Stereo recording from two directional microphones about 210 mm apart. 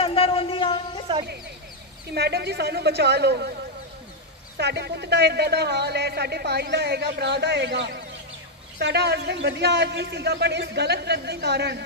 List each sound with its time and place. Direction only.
0.0 s a sound: 25° left (ahead or behind)
2.1 s speech: 50° right (ahead or behind)
4.6 s speech: 55° right (ahead or behind)